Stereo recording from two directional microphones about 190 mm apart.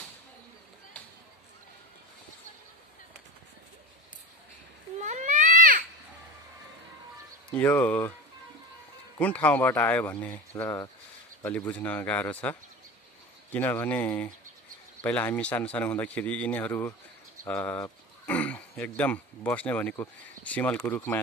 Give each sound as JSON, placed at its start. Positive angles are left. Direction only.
{"t": 4.9, "sound": "baby cry", "side_deg": -40}
{"t": 7.5, "sound": "a man's voice", "side_deg": 10}
{"t": 9.2, "sound": "a man's voice", "side_deg": 10}